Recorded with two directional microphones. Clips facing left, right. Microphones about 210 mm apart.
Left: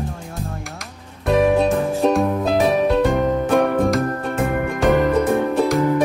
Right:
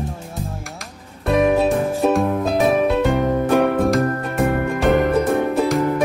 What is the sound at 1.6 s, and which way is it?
Music, 5° right (ahead or behind).